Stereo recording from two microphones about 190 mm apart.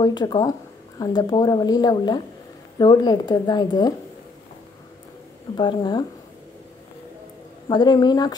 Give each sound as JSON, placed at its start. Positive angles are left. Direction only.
{"t": 0.0, "sound": "speech", "side_deg": 20}
{"t": 5.6, "sound": "speech", "side_deg": 25}
{"t": 7.6, "sound": "speech", "side_deg": 20}